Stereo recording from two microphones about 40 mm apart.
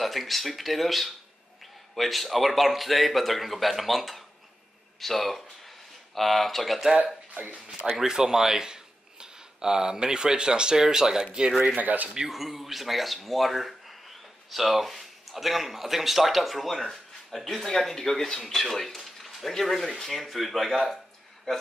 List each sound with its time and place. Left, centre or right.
0.0 s speech: centre
7.0 s speech: right
7.9 s speech: centre
11.7 s speech: right
12.3 s speech: centre